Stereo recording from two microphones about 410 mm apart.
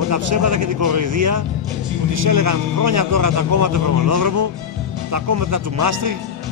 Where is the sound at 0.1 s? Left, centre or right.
Right.